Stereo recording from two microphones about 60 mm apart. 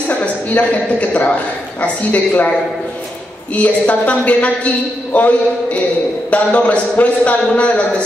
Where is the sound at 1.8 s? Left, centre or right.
Left.